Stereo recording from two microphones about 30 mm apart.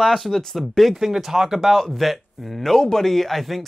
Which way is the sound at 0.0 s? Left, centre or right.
Centre.